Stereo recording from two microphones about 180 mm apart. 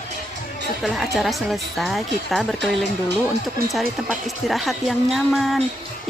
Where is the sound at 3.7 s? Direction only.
Centre (ahead or behind).